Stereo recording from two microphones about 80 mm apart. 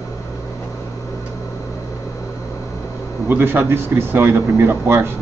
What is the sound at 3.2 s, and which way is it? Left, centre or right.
Speech, right.